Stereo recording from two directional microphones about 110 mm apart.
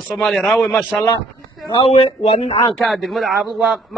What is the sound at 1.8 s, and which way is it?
Speech, 70° left (ahead or behind).